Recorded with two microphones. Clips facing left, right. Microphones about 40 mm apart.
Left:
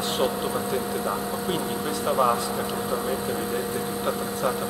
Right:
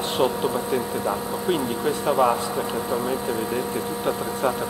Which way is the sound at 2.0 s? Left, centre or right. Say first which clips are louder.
Right 2 dB; centre.